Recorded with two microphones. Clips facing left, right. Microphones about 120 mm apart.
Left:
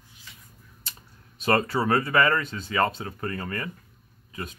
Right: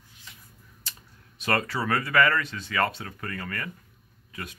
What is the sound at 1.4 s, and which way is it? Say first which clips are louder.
Speech: left 4 dB; 25° left (ahead or behind).